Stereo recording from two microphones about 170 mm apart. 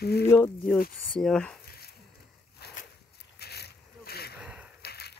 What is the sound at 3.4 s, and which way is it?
Vehicle, 70° left (ahead or behind).